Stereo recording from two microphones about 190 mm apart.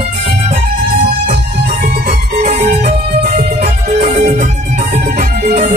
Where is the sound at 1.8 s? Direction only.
40° right (ahead or behind).